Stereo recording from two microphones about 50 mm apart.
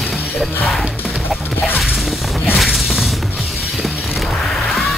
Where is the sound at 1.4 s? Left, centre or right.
Left.